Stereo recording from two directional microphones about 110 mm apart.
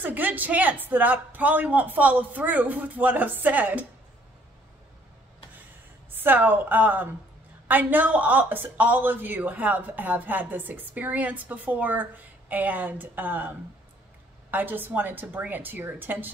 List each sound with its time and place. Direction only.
0.0 s speech: 15° right (ahead or behind)
6.1 s speech: 15° right (ahead or behind)
14.5 s speech: 15° right (ahead or behind)